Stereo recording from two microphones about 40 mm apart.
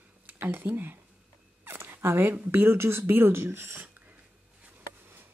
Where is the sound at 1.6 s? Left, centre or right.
Right.